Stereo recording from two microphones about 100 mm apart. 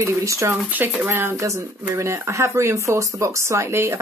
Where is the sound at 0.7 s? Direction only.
15° right (ahead or behind).